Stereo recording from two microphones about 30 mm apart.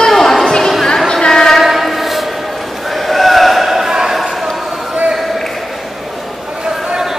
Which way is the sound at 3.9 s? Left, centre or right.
Right.